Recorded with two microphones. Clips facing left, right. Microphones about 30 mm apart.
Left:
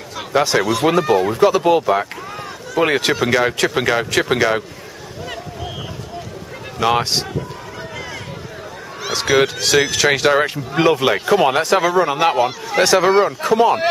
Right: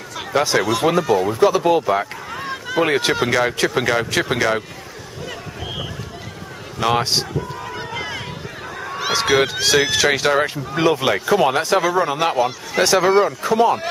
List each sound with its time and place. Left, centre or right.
0.3 s speech: centre
0.8 s speech: centre
1.4 s speech: centre
6.8 s speech: centre
7.9 s a sound: right
9.3 s speech: centre